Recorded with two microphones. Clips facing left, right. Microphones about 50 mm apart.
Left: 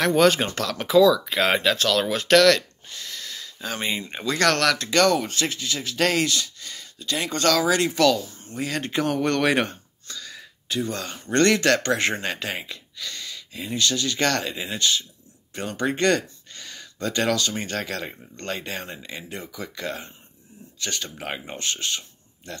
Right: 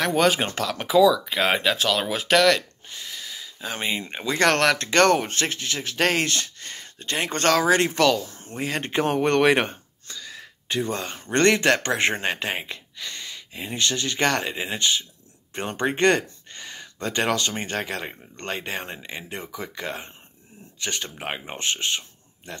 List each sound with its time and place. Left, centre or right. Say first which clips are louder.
0.0 s speech: left 2 dB; centre
4.4 s speech: right 1 dB; right